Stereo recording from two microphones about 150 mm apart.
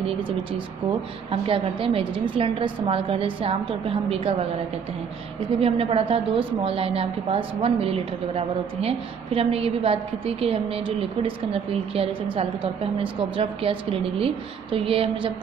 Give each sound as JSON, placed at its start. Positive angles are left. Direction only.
{"t": 0.0, "sound": "a woman's voice", "side_deg": -35}
{"t": 5.6, "sound": "a woman's voice", "side_deg": -40}